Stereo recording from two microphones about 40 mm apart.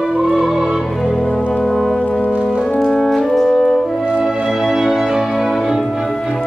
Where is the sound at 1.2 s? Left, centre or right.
Centre.